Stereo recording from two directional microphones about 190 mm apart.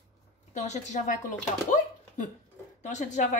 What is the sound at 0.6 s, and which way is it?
Speech, 40° left (ahead or behind).